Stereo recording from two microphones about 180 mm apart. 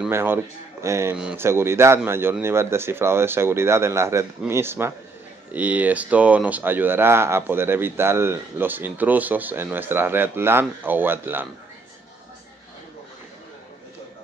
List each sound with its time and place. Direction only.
0.1 s speech: 15° right (ahead or behind)